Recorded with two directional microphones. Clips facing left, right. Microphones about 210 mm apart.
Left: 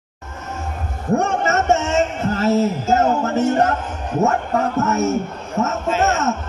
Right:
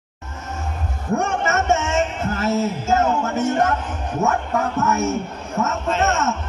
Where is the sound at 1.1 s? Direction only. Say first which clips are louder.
Left 3 dB; 40° left (ahead or behind).